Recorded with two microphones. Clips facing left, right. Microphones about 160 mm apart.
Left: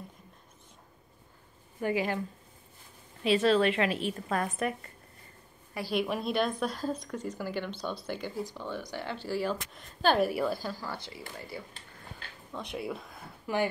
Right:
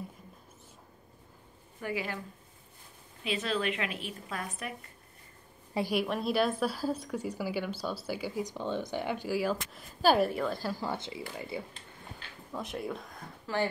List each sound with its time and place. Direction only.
1.8 s speech: 25° left (ahead or behind)
3.2 s a woman's voice: 35° left (ahead or behind)
4.3 s a woman's voice: 50° left (ahead or behind)
6.0 s a woman's voice: centre (ahead or behind)
8.5 s a woman's voice: 20° right (ahead or behind)
10.2 s speech: 5° left (ahead or behind)
10.8 s speech: 20° right (ahead or behind)
12.5 s speech: centre (ahead or behind)
13.5 s speech: 15° left (ahead or behind)